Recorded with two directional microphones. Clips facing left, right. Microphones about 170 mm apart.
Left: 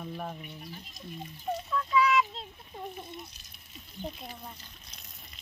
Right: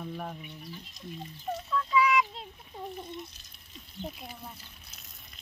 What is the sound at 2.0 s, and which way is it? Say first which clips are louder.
Child singing: even; 10° right (ahead or behind).